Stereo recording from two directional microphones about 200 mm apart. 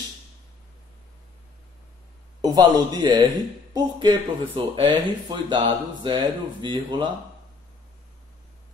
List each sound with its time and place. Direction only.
2.4 s speech: 20° right (ahead or behind)